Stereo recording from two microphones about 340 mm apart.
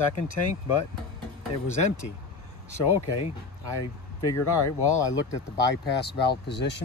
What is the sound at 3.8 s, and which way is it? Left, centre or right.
Speech, left.